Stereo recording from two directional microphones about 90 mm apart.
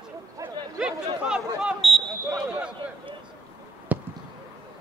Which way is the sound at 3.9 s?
20° right (ahead or behind).